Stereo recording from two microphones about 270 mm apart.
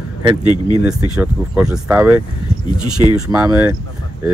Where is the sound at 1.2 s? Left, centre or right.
Centre.